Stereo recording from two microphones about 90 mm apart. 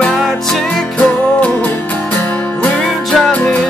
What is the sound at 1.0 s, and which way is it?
Music, 15° left (ahead or behind).